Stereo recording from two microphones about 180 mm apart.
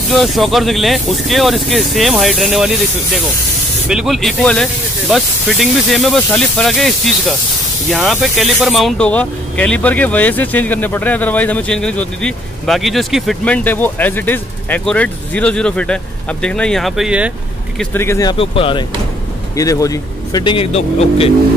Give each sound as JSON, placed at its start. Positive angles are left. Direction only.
{"t": 0.1, "sound": "speech", "side_deg": 0}
{"t": 3.9, "sound": "speech", "side_deg": 0}
{"t": 17.7, "sound": "speech", "side_deg": 15}
{"t": 18.3, "sound": "speech", "side_deg": 30}
{"t": 19.5, "sound": "speech", "side_deg": 20}